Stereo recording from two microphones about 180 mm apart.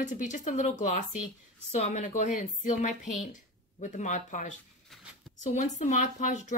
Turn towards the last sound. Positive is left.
turn(degrees=40)  # may be behind; listen again after turning